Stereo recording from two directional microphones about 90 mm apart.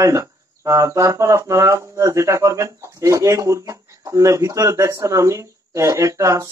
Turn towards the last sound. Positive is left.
turn(degrees=-35)  # may be behind; listen again after turning